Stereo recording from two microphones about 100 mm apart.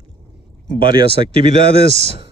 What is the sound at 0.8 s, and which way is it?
Speech, 50° right (ahead or behind).